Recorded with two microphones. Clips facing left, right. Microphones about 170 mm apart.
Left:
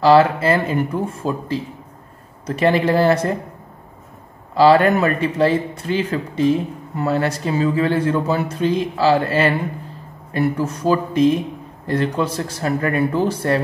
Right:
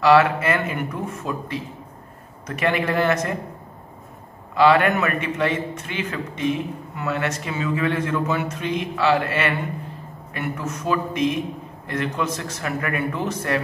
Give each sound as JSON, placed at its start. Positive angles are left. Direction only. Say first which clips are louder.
{"t": 0.0, "sound": "speech", "louder": "left 3 dB", "side_deg": 30}
{"t": 4.6, "sound": "speech", "louder": "left 4 dB", "side_deg": 35}